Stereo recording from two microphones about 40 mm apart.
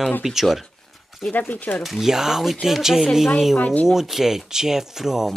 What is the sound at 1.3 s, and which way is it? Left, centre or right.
Speech, left.